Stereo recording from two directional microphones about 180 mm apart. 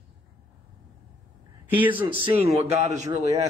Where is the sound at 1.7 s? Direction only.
10° right (ahead or behind).